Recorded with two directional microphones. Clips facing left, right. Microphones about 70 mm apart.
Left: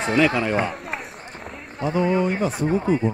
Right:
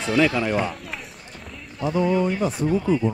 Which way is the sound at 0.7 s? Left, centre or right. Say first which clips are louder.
Left 4 dB; left.